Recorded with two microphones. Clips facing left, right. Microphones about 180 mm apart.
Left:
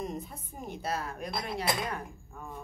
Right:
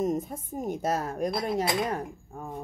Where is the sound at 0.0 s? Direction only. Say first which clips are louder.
Right 9 dB; 45° right (ahead or behind).